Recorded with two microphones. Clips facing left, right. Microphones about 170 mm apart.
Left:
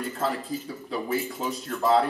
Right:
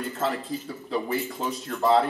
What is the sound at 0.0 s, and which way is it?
Speech, centre (ahead or behind).